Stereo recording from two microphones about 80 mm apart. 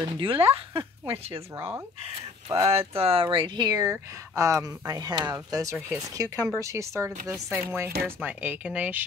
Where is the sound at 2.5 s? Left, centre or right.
Right.